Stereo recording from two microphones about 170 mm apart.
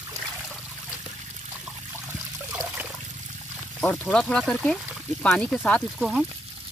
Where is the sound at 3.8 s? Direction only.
5° left (ahead or behind).